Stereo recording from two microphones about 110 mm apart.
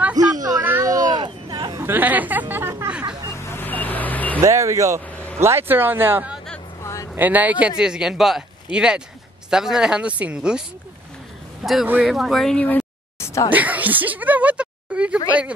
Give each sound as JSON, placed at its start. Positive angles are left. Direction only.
{"t": 0.1, "sound": "a sound", "side_deg": -35}
{"t": 1.8, "sound": "chatter", "side_deg": -20}
{"t": 2.9, "sound": "a sound", "side_deg": -10}
{"t": 3.3, "sound": "vehicle", "side_deg": 20}
{"t": 4.4, "sound": "speech", "side_deg": -30}
{"t": 5.1, "sound": "vehicle", "side_deg": 10}
{"t": 5.4, "sound": "speech", "side_deg": -20}
{"t": 6.8, "sound": "vehicle", "side_deg": 25}
{"t": 7.2, "sound": "speech", "side_deg": -15}
{"t": 11.6, "sound": "speech", "side_deg": 0}
{"t": 12.6, "sound": "a sound", "side_deg": 15}
{"t": 13.5, "sound": "speech", "side_deg": -15}